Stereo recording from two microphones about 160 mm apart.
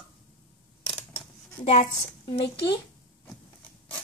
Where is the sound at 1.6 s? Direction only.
45° left (ahead or behind).